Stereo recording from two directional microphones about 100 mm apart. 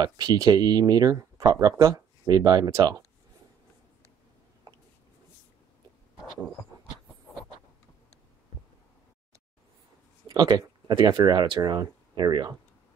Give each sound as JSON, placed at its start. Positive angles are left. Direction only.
{"t": 0.0, "sound": "speech", "side_deg": -45}
{"t": 10.2, "sound": "speech", "side_deg": -45}